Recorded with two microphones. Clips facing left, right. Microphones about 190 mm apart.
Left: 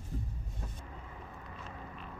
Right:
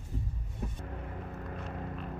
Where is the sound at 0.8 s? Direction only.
60° right (ahead or behind).